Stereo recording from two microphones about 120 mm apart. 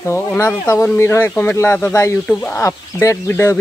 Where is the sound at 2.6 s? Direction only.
25° left (ahead or behind).